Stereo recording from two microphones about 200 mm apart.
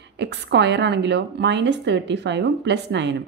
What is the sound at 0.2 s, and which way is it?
A woman's voice, 60° right (ahead or behind).